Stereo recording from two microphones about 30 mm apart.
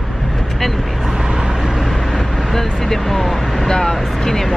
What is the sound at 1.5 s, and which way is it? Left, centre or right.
Vehicle, centre.